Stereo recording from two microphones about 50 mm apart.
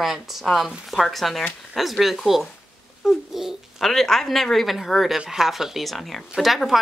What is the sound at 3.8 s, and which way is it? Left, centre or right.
Speech, centre.